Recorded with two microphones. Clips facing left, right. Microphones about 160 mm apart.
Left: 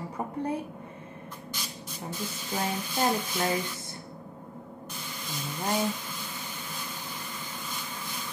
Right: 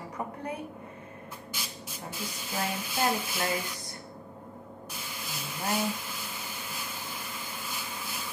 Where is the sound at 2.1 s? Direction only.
10° right (ahead or behind).